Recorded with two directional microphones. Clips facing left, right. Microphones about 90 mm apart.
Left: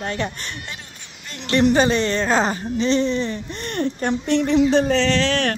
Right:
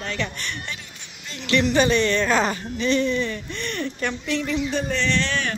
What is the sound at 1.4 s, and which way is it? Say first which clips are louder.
A woman's voice: left 3 dB; 40° left (ahead or behind).